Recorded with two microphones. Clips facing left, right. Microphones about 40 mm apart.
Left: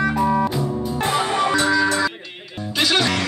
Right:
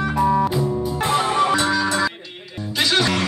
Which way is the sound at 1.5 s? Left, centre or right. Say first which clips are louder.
Left 1 dB; right.